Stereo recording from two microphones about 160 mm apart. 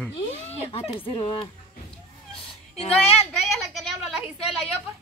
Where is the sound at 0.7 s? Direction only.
35° left (ahead or behind).